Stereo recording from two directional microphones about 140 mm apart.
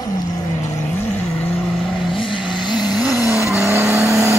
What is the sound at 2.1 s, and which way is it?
Vehicle, 35° left (ahead or behind).